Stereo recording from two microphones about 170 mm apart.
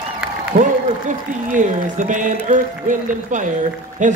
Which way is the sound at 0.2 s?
5° right (ahead or behind).